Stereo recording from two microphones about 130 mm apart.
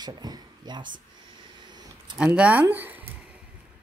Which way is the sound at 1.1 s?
35° right (ahead or behind).